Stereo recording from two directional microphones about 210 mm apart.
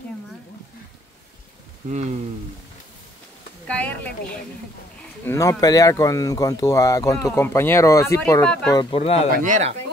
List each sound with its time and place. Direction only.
1.9 s speech: 35° right (ahead or behind)
3.6 s speech: 5° left (ahead or behind)
5.2 s speech: 15° left (ahead or behind)
8.7 s speech: 30° left (ahead or behind)
9.3 s speech: 40° right (ahead or behind)